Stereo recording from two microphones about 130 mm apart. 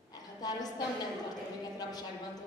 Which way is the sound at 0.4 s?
30° left (ahead or behind).